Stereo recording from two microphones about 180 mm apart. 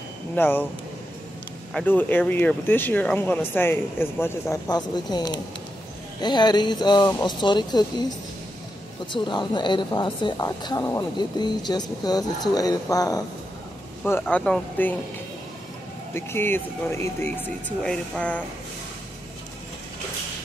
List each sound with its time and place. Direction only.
0.4 s speech: 10° left (ahead or behind)
1.7 s a woman's voice: 5° left (ahead or behind); by 7.8 s 25° left (ahead or behind)
9.1 s a woman's voice: 25° left (ahead or behind); by 15.0 s 10° left (ahead or behind)
16.1 s speech: 15° left (ahead or behind)